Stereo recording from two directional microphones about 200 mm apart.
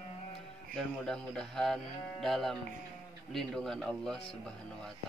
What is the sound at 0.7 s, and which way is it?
Speech, 5° left (ahead or behind).